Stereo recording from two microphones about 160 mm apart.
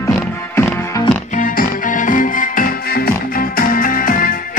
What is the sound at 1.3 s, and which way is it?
Music, 60° left (ahead or behind).